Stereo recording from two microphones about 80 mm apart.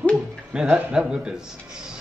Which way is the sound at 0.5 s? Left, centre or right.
Centre.